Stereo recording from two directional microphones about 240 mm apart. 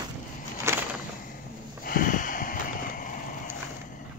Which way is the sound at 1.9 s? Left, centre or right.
Left.